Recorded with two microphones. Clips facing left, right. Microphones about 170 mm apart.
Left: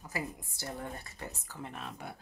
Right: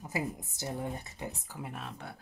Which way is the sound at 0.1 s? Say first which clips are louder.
Right 3 dB; 20° right (ahead or behind).